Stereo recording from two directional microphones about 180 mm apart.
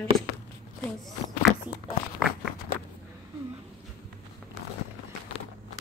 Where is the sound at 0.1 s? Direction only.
Centre (ahead or behind).